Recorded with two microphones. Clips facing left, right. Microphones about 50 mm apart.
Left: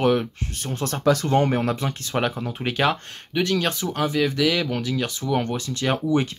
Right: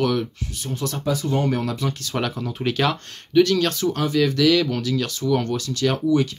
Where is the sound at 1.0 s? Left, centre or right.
Left.